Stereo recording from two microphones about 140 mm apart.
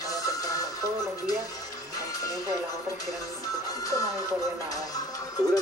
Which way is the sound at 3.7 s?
25° left (ahead or behind).